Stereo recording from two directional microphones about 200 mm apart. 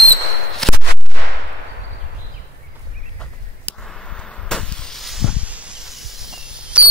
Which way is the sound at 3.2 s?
5° left (ahead or behind).